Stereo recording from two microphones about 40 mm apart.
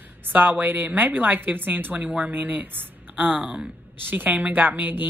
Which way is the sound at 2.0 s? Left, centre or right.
Right.